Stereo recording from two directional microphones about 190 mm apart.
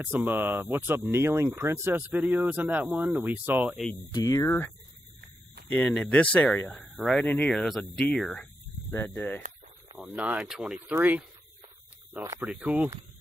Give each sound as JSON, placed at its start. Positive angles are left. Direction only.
{"t": 0.0, "sound": "speech", "side_deg": -10}
{"t": 4.1, "sound": "speech", "side_deg": 20}
{"t": 9.9, "sound": "speech", "side_deg": 0}